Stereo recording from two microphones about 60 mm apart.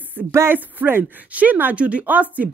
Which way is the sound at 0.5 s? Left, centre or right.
Right.